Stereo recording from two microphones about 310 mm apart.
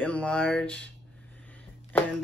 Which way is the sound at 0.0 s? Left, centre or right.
Centre.